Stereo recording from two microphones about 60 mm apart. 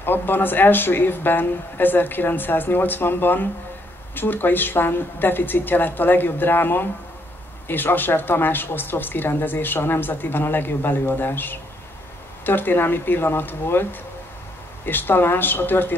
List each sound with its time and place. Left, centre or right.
0.0 s speech: left
14.9 s speech: left